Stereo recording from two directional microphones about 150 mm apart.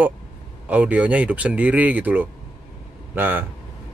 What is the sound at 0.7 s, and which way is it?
A man's voice, 10° right (ahead or behind).